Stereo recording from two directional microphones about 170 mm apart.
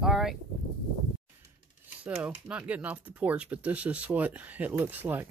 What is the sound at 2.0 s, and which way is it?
Speech, 5° right (ahead or behind).